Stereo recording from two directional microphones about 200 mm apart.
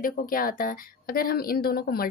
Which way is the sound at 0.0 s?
45° left (ahead or behind).